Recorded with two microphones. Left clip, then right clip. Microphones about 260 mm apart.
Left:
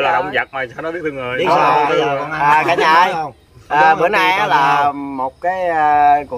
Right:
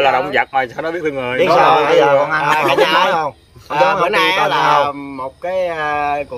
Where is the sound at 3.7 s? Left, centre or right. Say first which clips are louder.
Left 2 dB; centre.